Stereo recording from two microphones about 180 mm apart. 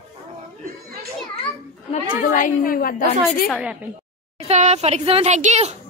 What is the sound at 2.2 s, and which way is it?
Speech, 45° left (ahead or behind).